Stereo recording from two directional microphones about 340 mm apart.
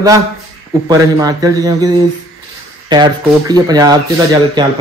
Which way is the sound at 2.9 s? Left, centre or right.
Centre.